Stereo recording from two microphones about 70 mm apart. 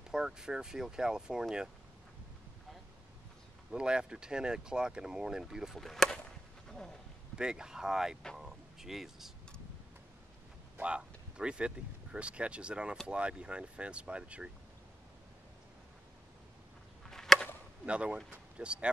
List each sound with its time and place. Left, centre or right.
0.1 s speech: centre
3.7 s speech: centre
5.9 s chop: centre
6.7 s a sound: centre
7.3 s speech: centre
8.4 s a sound: centre
10.8 s speech: centre
17.0 s chop: centre
17.8 s speech: centre